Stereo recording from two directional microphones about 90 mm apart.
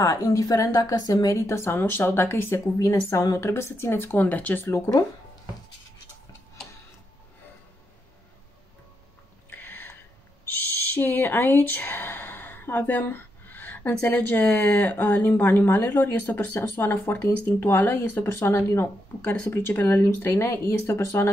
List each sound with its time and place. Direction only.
0.0 s a woman's voice: 35° left (ahead or behind); by 4.6 s 20° left (ahead or behind)
9.5 s a sound: 20° left (ahead or behind)
10.4 s speech: 25° left (ahead or behind)